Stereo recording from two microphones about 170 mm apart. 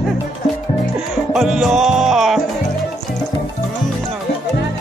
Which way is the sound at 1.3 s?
Centre (ahead or behind).